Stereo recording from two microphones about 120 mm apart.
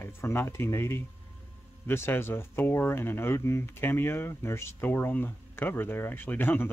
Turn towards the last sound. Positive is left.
turn(degrees=15)  # may be behind; listen again after turning